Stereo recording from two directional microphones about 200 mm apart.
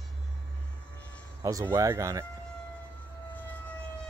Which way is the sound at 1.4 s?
15° right (ahead or behind).